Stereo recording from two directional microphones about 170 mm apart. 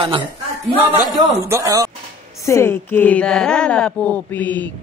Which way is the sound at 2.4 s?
15° left (ahead or behind).